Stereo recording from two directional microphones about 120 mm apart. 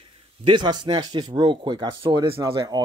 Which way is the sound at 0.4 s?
40° right (ahead or behind).